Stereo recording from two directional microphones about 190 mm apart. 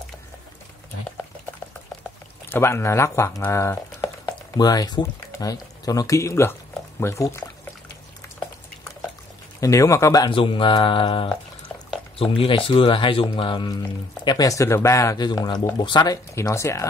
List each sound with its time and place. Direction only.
2.5 s speech: 15° left (ahead or behind)
9.6 s speech: 15° left (ahead or behind)